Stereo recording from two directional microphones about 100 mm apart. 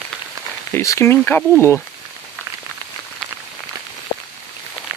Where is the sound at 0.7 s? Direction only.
30° left (ahead or behind).